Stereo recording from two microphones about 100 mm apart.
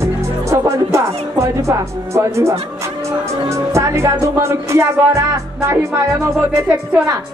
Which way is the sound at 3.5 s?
30° right (ahead or behind).